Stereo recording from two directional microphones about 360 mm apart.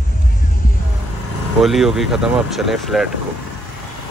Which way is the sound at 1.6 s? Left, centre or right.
Centre.